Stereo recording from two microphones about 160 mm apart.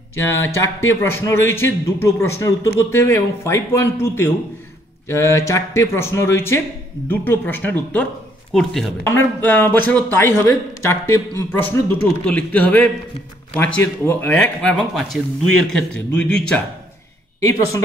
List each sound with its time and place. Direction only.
0.1 s a man's voice: 15° left (ahead or behind)
9.0 s a man's voice: 15° left (ahead or behind)
14.0 s a man's voice: 10° left (ahead or behind)
17.4 s speech: 20° left (ahead or behind)